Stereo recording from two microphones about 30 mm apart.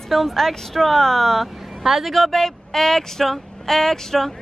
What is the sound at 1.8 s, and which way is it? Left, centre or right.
Speech, centre.